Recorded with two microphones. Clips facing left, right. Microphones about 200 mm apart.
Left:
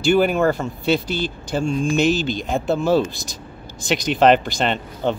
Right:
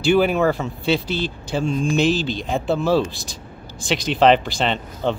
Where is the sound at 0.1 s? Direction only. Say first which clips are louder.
Even; centre (ahead or behind).